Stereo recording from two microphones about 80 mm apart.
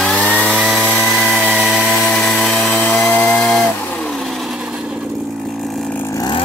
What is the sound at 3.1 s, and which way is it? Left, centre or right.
Chainsaw, centre.